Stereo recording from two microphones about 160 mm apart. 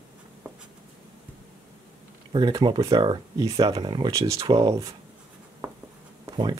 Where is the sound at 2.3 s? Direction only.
30° right (ahead or behind).